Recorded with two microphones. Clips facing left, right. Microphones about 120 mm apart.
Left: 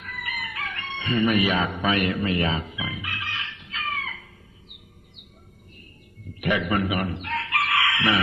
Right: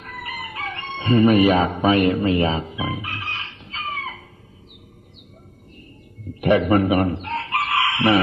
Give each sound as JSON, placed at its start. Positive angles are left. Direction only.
{"t": 0.0, "sound": "chicken", "side_deg": -30}
{"t": 6.4, "sound": "chicken", "side_deg": -35}